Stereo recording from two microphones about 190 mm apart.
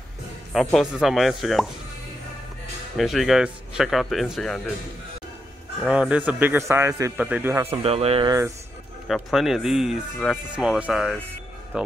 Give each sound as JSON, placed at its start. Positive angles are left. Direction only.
{"t": 0.7, "sound": "speech", "side_deg": 0}
{"t": 3.0, "sound": "speech", "side_deg": 0}
{"t": 5.8, "sound": "speech", "side_deg": -5}
{"t": 7.8, "sound": "speech", "side_deg": -30}
{"t": 9.0, "sound": "speech", "side_deg": 0}